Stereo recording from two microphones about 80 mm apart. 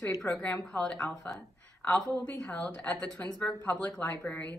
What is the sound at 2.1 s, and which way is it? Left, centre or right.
Speech, centre.